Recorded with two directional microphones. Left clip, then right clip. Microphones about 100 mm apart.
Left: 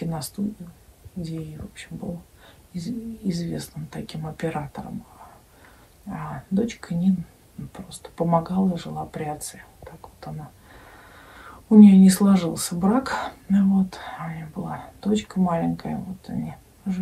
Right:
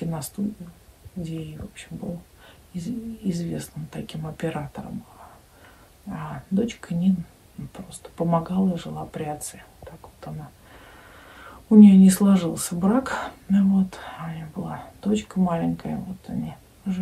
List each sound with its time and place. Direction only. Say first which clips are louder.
0.0 s a sound: left 1 dB; 10° right (ahead or behind)
1.2 s speech: even; 15° right (ahead or behind)
6.1 s speech: even; 20° right (ahead or behind)
11.7 s speech: even; 15° right (ahead or behind)